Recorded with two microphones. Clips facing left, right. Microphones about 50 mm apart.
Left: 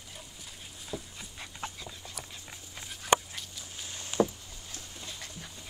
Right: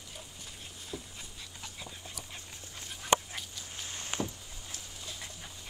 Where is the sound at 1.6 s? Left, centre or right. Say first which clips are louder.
Left 10 dB; left.